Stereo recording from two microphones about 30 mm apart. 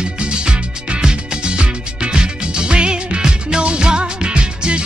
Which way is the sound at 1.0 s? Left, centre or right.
Right.